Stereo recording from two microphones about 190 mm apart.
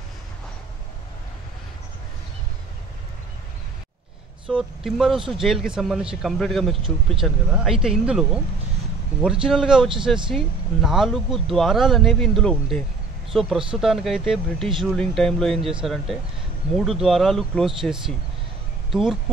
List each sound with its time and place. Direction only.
4.5 s a man's voice: centre (ahead or behind)